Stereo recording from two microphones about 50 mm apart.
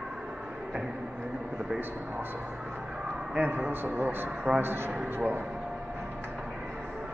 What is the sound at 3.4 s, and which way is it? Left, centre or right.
A man's voice, right.